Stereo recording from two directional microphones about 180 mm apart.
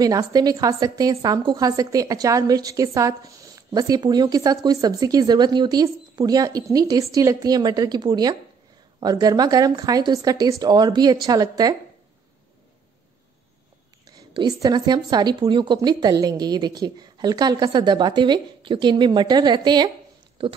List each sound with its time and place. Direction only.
0.0 s a woman's voice: 20° right (ahead or behind)
14.0 s a woman's voice: 25° right (ahead or behind)